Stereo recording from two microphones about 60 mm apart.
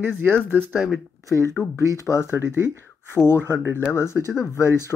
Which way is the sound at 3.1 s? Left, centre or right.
Left.